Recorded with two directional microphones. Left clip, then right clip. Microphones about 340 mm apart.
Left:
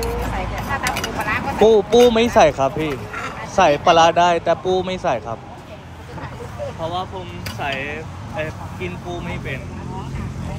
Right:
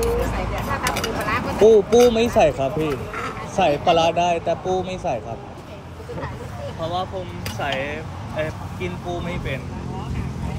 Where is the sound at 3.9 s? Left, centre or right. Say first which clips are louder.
Left 5 dB; left.